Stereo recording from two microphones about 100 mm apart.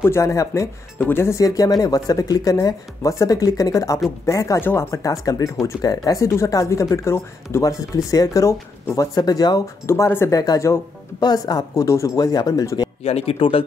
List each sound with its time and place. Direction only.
0.0 s speech: 30° left (ahead or behind)
0.9 s speech: 20° left (ahead or behind)
1.4 s speech: 40° left (ahead or behind)
9.8 s speech: 25° left (ahead or behind)
10.4 s speech: 40° left (ahead or behind)
13.0 s speech: 90° left; by 13.7 s 70° left (ahead or behind)